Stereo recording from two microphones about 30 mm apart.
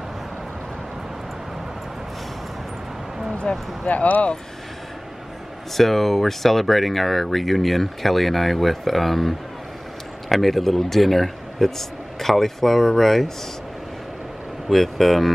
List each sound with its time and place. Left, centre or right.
3.3 s speech: left
5.8 s speech: centre
10.3 s speech: centre
14.7 s speech: centre